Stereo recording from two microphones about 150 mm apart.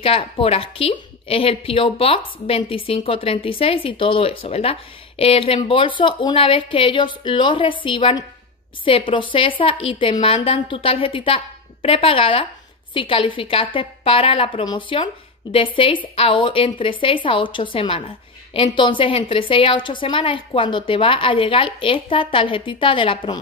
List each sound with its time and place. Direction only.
0.0 s a woman's voice: 40° left (ahead or behind)